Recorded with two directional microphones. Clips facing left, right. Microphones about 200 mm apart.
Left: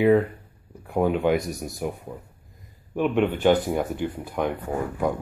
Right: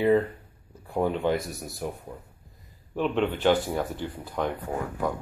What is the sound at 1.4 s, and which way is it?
Speech, centre (ahead or behind).